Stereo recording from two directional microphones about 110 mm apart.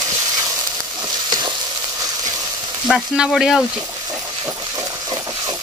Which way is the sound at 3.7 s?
30° right (ahead or behind).